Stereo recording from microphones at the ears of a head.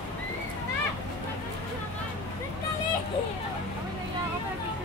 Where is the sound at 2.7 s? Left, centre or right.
Left.